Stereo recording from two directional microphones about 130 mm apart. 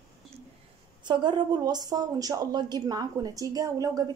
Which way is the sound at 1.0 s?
35° right (ahead or behind).